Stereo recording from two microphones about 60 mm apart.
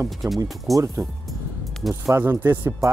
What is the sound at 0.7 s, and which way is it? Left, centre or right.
Speech, right.